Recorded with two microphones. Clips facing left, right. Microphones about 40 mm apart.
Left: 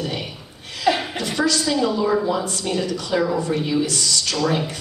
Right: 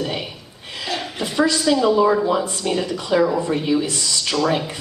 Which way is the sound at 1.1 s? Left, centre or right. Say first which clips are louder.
Right 2 dB; centre.